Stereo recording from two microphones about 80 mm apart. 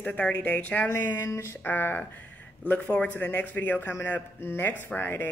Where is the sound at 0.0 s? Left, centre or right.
Centre.